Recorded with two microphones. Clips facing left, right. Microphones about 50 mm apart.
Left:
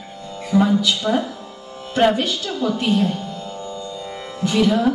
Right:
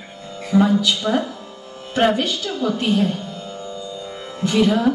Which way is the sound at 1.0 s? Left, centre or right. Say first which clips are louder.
Left 1 dB; centre.